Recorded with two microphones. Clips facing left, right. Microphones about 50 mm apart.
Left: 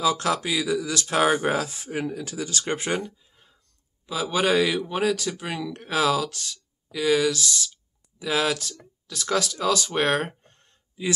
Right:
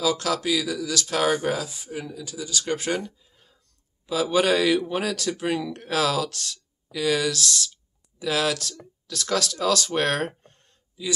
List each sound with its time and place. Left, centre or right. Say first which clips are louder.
0.0 s speech: left 1 dB; left
1.6 s speech: left 4 dB; left
2.6 s speech: right 1 dB; left
4.0 s speech: right 2 dB; centre